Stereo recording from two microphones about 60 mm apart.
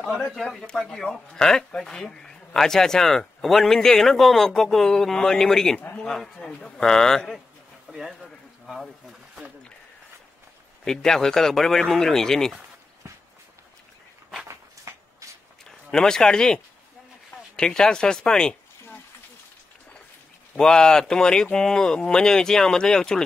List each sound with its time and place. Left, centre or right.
0.7 s speech: centre
5.8 s speech: left
6.0 s speech: centre
7.9 s speech: centre
10.9 s speech: centre
14.5 s a sound: right
15.6 s speech: centre
20.5 s speech: centre